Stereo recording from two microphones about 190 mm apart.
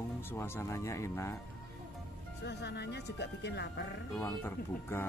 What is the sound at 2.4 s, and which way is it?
Speech, 60° left (ahead or behind).